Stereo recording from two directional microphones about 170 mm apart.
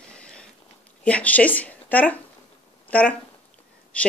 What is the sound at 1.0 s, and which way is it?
Speech, 10° left (ahead or behind).